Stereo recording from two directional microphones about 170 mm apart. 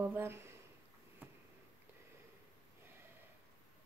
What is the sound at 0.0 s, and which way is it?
Speech, 15° right (ahead or behind).